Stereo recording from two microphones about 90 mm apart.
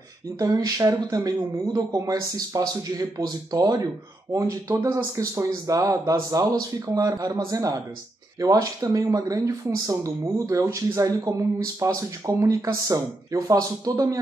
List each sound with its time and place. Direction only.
0.4 s speech: 45° right (ahead or behind)